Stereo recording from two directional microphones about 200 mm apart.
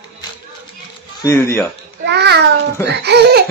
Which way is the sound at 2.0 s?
55° right (ahead or behind).